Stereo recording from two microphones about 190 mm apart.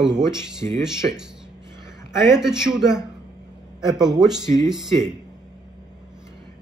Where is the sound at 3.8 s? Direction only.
20° right (ahead or behind).